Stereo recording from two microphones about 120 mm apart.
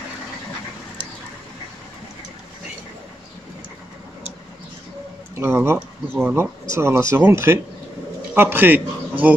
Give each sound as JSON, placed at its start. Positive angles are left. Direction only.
{"t": 5.3, "sound": "a man's voice", "side_deg": -20}